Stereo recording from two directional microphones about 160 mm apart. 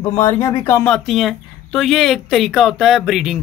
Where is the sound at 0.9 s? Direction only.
Centre (ahead or behind).